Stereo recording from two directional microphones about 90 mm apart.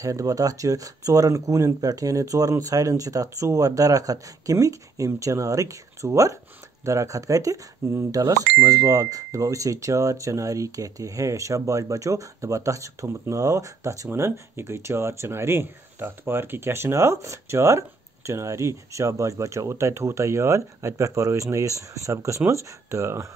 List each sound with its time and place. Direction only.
0.0 s speech: 40° right (ahead or behind)